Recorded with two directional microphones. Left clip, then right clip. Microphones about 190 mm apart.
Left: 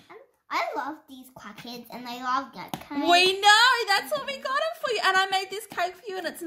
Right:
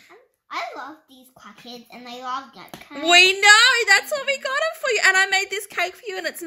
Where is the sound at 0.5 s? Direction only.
35° left (ahead or behind).